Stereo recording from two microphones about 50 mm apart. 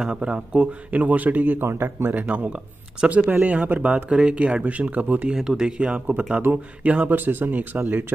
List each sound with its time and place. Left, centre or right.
0.1 s speech: right
1.7 s speech: right
2.2 s speech: right
4.6 s speech: right
5.3 s speech: centre
5.9 s speech: right
6.5 s speech: right
6.8 s speech: right